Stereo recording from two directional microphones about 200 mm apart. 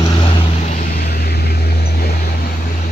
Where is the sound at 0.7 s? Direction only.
40° left (ahead or behind).